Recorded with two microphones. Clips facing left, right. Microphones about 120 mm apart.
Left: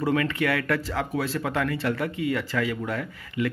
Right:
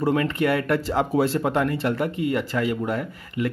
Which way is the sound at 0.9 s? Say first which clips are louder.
Right 6 dB; 25° right (ahead or behind).